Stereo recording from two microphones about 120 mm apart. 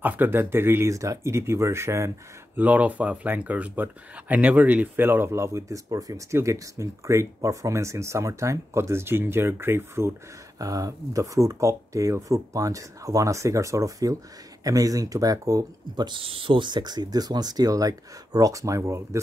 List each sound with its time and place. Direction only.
0.0 s speech: 15° right (ahead or behind)
16.1 s speech: 50° right (ahead or behind); by 19.0 s 25° right (ahead or behind)